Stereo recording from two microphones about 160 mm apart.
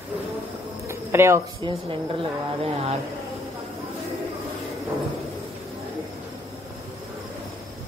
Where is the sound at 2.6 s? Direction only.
40° right (ahead or behind).